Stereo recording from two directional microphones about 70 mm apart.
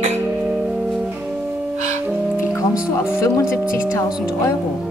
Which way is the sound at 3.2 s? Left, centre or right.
Left.